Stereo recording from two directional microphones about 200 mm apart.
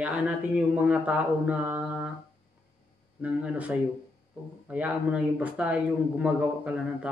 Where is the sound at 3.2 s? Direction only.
5° right (ahead or behind).